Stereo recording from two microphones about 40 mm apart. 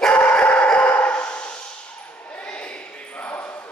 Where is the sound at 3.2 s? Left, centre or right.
Left.